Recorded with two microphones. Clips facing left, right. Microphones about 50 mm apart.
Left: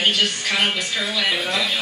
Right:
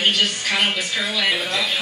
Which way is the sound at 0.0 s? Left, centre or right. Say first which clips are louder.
Even; centre.